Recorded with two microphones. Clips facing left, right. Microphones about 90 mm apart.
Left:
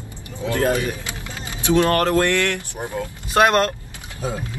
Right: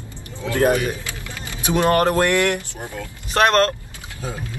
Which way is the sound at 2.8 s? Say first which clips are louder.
Left 4 dB; 20° left (ahead or behind).